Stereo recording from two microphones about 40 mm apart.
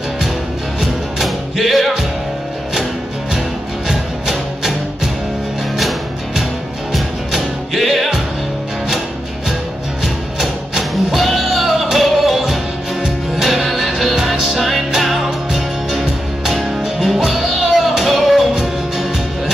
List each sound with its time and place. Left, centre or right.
0.7 s music: centre
3.3 s music: centre
10.0 s music: centre